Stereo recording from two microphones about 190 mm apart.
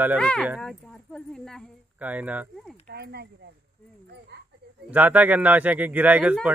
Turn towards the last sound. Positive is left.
turn(degrees=-5)  # may be behind; listen again after turning